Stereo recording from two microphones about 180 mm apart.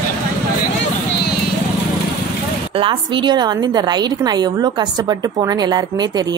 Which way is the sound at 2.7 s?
30° right (ahead or behind).